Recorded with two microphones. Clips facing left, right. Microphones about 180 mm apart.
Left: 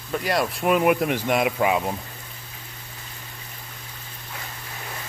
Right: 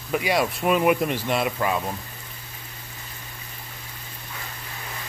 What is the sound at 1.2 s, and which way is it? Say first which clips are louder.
Speech: left 3 dB; 10° left (ahead or behind).